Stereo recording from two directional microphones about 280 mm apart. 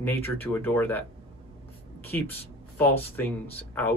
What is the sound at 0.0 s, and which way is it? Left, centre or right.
Speech, centre.